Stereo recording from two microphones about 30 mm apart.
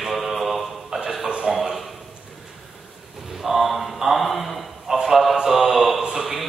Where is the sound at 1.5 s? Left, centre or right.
Centre.